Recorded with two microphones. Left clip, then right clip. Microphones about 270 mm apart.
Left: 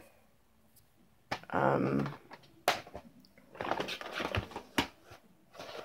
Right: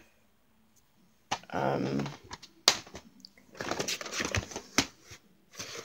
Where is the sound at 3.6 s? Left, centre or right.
Right.